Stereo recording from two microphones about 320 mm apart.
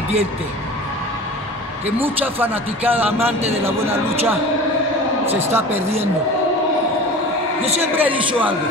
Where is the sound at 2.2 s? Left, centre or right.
Centre.